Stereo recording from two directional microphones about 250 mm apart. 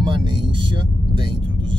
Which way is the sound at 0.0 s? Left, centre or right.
Centre.